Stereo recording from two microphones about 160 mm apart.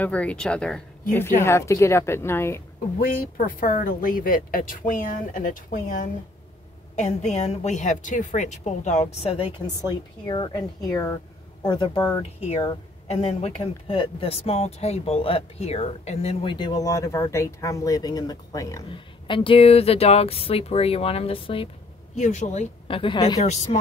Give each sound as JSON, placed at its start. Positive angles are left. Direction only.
{"t": 0.0, "sound": "a woman's voice", "side_deg": 10}
{"t": 3.0, "sound": "speech", "side_deg": 60}
{"t": 7.0, "sound": "a woman's voice", "side_deg": 45}
{"t": 9.8, "sound": "speech", "side_deg": 30}
{"t": 16.5, "sound": "speech", "side_deg": 25}
{"t": 18.9, "sound": "speech", "side_deg": 30}
{"t": 22.1, "sound": "a woman's voice", "side_deg": 45}
{"t": 22.8, "sound": "speech", "side_deg": 35}
{"t": 23.4, "sound": "a woman's voice", "side_deg": 45}